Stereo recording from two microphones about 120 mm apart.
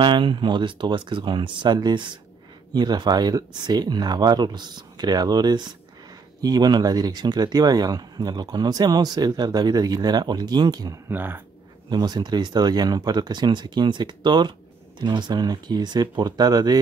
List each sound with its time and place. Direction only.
0.0 s speech: 40° right (ahead or behind)
11.1 s speech: 15° right (ahead or behind)
11.9 s speech: 35° right (ahead or behind)